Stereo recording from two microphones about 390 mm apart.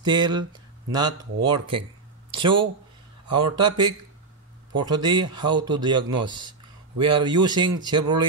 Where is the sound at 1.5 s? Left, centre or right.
Right.